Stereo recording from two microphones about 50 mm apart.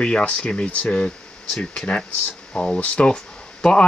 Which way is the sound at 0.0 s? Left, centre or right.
Left.